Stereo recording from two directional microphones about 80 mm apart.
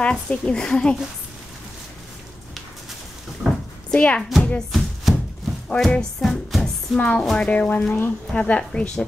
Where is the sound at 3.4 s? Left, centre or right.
Centre.